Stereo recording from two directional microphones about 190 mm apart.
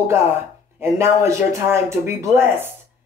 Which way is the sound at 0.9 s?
15° right (ahead or behind).